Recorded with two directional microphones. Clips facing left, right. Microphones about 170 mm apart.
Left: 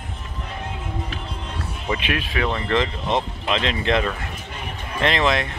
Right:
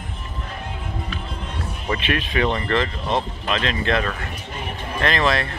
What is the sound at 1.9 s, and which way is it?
Speech, 10° left (ahead or behind).